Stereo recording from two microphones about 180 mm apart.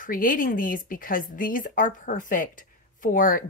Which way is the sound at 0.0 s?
50° left (ahead or behind).